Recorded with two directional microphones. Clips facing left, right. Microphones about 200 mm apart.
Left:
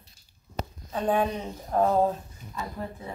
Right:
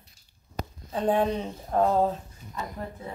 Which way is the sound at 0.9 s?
30° right (ahead or behind).